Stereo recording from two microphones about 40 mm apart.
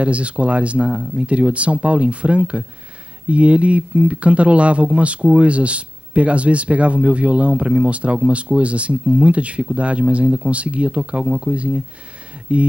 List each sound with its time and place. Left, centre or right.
0.0 s speech: right